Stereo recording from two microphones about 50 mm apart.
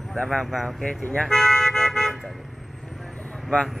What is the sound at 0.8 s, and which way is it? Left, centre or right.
Speech, left.